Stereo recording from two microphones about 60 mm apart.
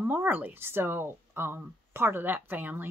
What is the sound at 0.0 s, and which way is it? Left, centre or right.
A woman's voice, right.